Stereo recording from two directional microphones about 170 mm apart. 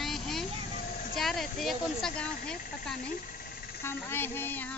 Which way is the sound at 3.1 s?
55° left (ahead or behind).